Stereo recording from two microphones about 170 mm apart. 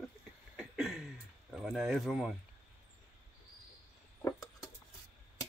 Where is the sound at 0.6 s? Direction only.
Centre (ahead or behind).